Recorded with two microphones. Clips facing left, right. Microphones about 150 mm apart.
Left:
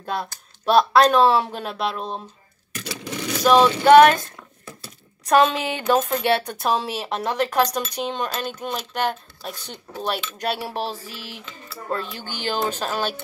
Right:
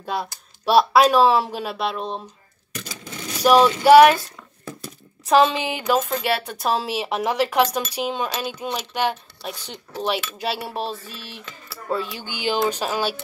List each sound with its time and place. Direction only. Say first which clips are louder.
0.0 s speech: right 1 dB; centre (ahead or behind)
2.9 s a sound: left 7 dB; 85° left
3.4 s speech: right 1 dB; 5° right (ahead or behind)
5.2 s speech: right 1 dB; 5° right (ahead or behind)
11.9 s speech: right 2 dB; 10° right (ahead or behind)